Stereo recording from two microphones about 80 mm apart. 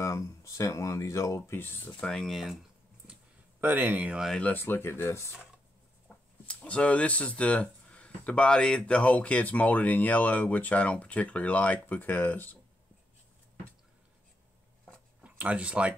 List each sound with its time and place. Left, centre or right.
0.0 s speech: left
2.0 s speech: centre
3.6 s speech: right
4.4 s speech: left
6.0 s speech: centre
15.2 s speech: centre